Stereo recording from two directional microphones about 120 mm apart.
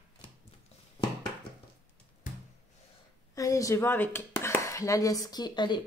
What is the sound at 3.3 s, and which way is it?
Speech, 25° left (ahead or behind).